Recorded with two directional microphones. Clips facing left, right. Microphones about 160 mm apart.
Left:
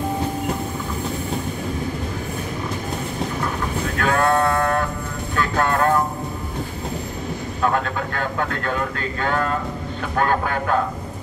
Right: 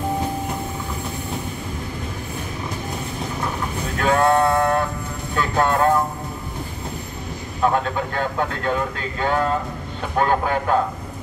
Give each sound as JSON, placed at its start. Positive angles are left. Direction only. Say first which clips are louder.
{"t": 4.0, "sound": "a sound", "louder": "right 2 dB", "side_deg": -20}
{"t": 5.3, "sound": "vehicle", "louder": "right 1 dB", "side_deg": -20}
{"t": 7.6, "sound": "speech", "louder": "right 2 dB", "side_deg": -20}